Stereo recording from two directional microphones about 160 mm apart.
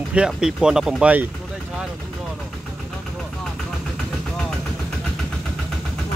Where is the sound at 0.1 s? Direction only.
5° right (ahead or behind).